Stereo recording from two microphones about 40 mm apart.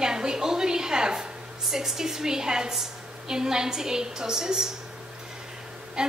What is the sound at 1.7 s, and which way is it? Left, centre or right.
A woman's voice, centre.